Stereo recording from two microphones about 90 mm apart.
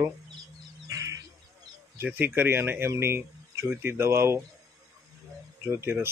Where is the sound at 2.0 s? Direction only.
20° right (ahead or behind).